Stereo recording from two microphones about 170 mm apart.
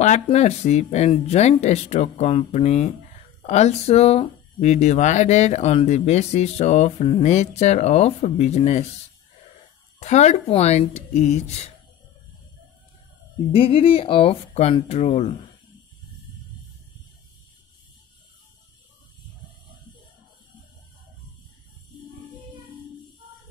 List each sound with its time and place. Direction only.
0.0 s speech: 45° left (ahead or behind)
9.9 s speech: 40° left (ahead or behind)
13.5 s speech: 35° left (ahead or behind)